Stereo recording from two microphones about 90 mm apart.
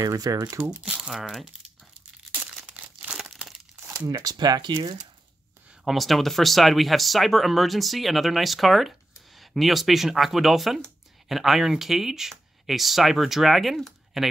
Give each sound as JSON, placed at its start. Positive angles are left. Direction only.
{"t": 0.0, "sound": "speech", "side_deg": -40}
{"t": 0.6, "sound": "speech", "side_deg": -15}
{"t": 2.3, "sound": "crumpling", "side_deg": -10}
{"t": 3.7, "sound": "crumpling", "side_deg": -30}
{"t": 4.0, "sound": "speech", "side_deg": -45}
{"t": 5.9, "sound": "speech", "side_deg": 0}